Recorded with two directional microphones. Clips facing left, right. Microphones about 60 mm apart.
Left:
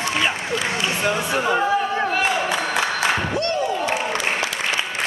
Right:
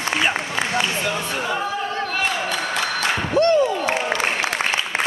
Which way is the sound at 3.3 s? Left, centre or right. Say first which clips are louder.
Right 7 dB; right.